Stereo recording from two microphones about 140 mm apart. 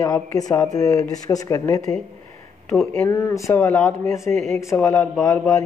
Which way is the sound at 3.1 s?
20° left (ahead or behind).